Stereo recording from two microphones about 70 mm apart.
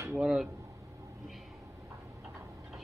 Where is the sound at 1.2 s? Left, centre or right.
Centre.